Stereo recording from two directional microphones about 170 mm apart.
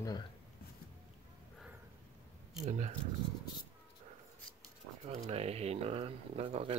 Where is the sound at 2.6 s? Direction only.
45° right (ahead or behind).